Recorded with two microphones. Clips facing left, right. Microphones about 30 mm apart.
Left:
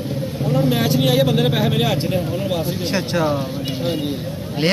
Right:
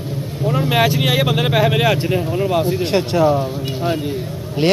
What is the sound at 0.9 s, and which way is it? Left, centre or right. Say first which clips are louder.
Speech: left 1 dB; right.